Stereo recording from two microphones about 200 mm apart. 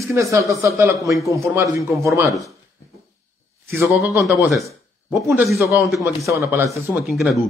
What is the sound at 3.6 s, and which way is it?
Speech, 15° right (ahead or behind).